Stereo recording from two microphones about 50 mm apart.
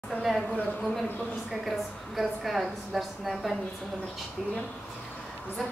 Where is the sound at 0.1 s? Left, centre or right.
Centre.